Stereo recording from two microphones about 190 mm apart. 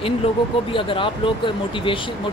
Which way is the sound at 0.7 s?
25° left (ahead or behind).